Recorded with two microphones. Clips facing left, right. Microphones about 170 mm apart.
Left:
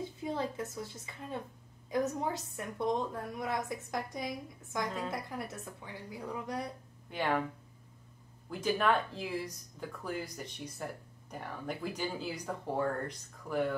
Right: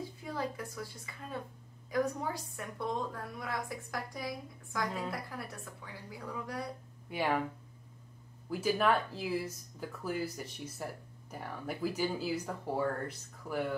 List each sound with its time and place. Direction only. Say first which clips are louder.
0.0 s a woman's voice: left 2 dB; 25° left (ahead or behind)
7.1 s speech: even; 10° right (ahead or behind)
8.5 s speech: right 1 dB; 5° right (ahead or behind)